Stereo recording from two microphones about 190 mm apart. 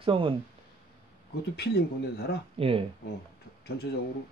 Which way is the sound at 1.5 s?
60° left (ahead or behind).